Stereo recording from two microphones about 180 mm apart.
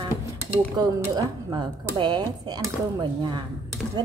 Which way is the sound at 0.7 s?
20° right (ahead or behind).